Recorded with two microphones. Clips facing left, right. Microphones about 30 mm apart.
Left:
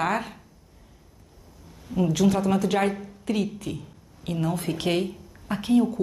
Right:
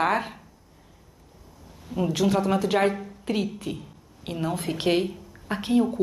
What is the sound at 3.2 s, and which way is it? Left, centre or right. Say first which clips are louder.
A woman's voice: left 1 dB; right.